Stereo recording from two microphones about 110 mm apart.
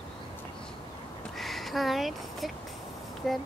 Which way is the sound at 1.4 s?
Centre (ahead or behind).